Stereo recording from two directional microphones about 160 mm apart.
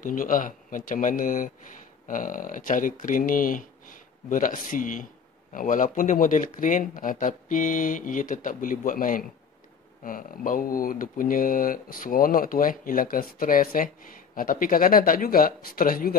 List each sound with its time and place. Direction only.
0.0 s speech: 55° left (ahead or behind)